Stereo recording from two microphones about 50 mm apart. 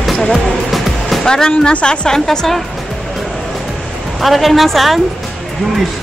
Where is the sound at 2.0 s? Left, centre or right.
Centre.